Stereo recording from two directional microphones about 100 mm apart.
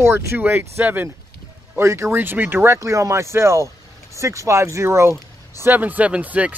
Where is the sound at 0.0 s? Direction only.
25° right (ahead or behind).